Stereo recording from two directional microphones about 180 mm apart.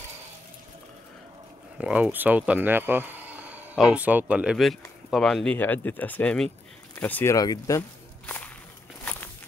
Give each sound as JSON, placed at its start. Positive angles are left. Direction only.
{"t": 1.8, "sound": "speech", "side_deg": -5}